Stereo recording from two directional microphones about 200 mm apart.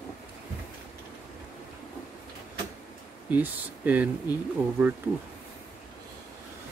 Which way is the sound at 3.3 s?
10° right (ahead or behind).